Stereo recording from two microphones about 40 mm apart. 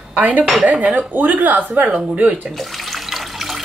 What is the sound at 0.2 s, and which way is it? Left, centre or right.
Speech, right.